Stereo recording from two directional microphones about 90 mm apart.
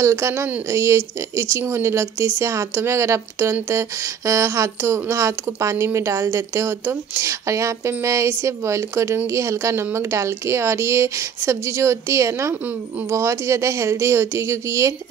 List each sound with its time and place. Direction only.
0.0 s speech: 35° right (ahead or behind)